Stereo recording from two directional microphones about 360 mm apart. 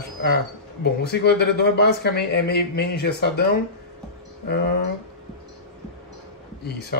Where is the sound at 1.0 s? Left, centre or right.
Left.